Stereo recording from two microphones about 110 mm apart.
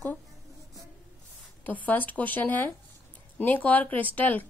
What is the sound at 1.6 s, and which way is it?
A woman's voice, 15° left (ahead or behind).